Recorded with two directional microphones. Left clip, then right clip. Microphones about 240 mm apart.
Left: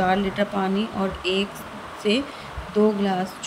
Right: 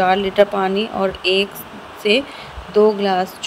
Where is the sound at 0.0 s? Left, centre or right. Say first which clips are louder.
Right 8 dB; centre.